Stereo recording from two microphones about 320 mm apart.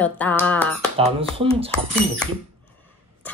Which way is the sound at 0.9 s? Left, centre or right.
Centre.